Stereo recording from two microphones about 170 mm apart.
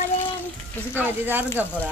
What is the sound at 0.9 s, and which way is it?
Speech, 10° right (ahead or behind).